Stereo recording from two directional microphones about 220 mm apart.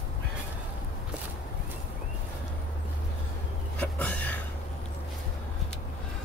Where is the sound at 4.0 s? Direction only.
5° left (ahead or behind).